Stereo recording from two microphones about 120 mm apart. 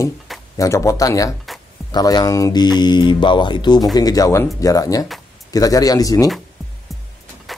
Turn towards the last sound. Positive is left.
turn(degrees=30)  # may be behind; listen again after turning